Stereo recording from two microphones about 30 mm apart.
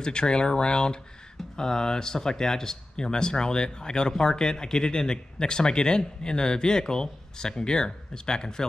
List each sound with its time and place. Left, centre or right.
0.0 s speech: left